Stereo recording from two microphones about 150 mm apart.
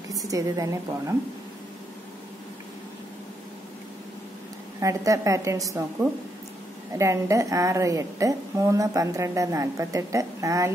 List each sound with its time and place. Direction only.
0.1 s a woman's voice: 25° right (ahead or behind)
4.7 s a woman's voice: 20° right (ahead or behind)
6.9 s a woman's voice: 20° right (ahead or behind)